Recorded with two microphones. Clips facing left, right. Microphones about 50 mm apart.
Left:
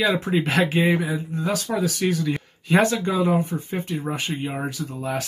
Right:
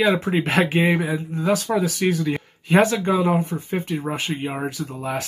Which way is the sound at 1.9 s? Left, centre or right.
Right.